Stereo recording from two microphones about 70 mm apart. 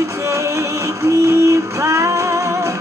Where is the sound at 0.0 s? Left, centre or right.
Right.